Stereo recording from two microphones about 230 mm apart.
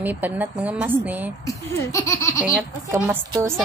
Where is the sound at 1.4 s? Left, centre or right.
Centre.